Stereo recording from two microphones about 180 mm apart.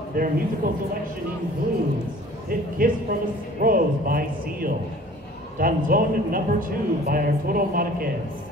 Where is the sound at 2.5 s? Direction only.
50° right (ahead or behind).